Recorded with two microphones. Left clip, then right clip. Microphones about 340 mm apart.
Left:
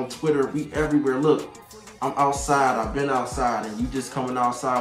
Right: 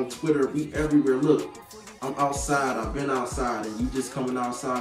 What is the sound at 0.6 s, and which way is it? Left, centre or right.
Speech, centre.